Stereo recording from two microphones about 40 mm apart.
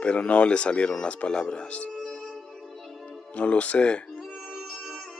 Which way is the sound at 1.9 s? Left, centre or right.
Centre.